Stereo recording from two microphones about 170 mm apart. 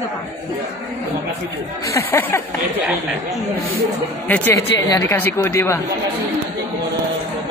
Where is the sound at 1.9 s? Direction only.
15° left (ahead or behind).